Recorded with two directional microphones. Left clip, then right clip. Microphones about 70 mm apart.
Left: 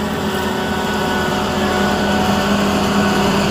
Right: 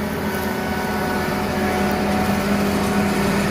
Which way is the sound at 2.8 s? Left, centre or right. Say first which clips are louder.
Left 5 dB; right.